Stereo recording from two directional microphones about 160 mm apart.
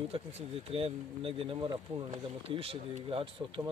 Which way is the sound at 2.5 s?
35° right (ahead or behind).